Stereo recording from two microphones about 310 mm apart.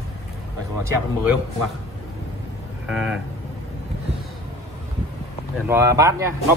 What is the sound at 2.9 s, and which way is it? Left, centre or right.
Speech, centre.